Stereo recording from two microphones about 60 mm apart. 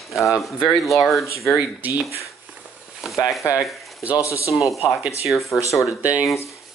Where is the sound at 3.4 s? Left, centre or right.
Left.